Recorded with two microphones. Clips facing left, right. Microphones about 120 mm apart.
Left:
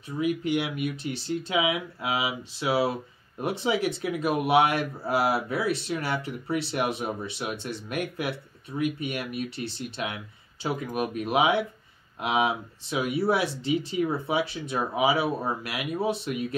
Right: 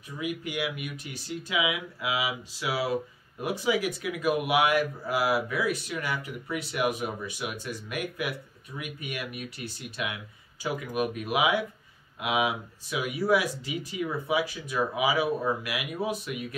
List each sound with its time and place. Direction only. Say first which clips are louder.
0.2 s speech: left 6 dB; 30° left (ahead or behind)